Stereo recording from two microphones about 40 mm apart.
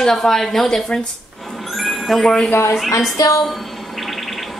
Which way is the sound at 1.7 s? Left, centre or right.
Centre.